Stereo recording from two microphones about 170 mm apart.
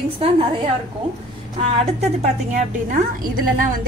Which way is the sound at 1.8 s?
40° right (ahead or behind).